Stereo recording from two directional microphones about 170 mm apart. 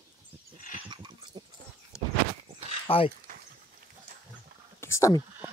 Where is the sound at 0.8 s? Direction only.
25° right (ahead or behind).